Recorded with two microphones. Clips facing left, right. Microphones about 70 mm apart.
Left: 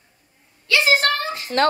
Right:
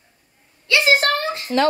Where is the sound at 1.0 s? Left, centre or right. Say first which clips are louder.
Right 2 dB; right.